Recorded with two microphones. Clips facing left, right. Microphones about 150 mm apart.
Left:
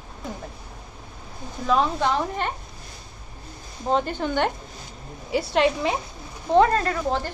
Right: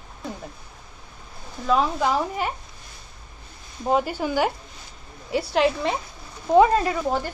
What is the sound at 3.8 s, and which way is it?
A woman's voice, 10° right (ahead or behind).